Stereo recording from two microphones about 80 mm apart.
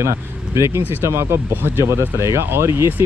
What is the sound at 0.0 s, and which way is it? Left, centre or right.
Speech, right.